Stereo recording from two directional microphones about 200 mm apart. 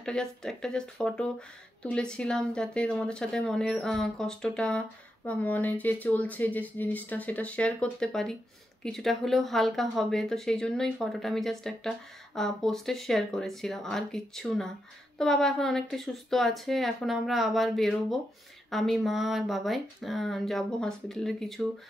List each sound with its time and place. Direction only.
0.0 s speech: 5° left (ahead or behind)